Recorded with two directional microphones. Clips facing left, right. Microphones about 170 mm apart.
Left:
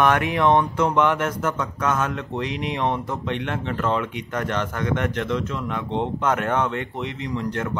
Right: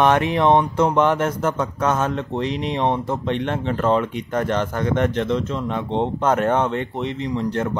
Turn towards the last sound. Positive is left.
turn(degrees=-30)  # may be behind; listen again after turning